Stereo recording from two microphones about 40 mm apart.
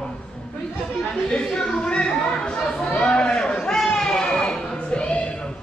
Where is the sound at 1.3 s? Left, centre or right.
Centre.